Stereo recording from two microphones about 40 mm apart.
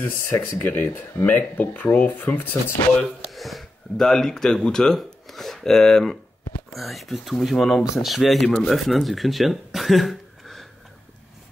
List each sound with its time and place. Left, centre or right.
0.3 s speech: left
3.0 s a sound: centre
3.9 s speech: centre
6.7 s speech: centre